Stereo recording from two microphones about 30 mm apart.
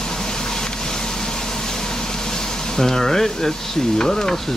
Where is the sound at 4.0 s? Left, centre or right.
Left.